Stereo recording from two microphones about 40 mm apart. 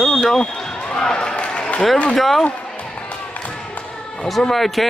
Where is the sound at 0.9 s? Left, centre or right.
Centre.